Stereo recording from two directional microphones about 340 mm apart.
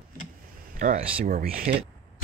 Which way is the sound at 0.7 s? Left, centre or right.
Right.